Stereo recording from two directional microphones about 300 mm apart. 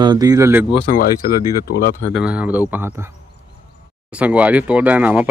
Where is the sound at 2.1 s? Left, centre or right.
Centre.